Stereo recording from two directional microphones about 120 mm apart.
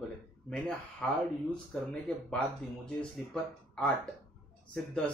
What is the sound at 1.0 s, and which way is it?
Speech, 10° left (ahead or behind).